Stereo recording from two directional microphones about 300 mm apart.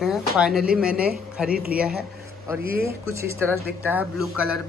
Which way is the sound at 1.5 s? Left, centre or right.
Right.